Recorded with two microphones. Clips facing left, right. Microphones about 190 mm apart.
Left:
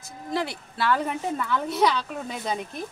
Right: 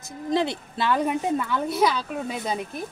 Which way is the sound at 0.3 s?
20° right (ahead or behind).